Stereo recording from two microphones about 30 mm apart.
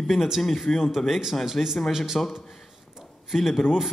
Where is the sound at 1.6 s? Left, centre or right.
Left.